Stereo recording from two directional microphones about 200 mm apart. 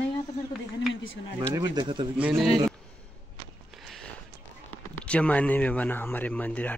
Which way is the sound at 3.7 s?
Centre (ahead or behind).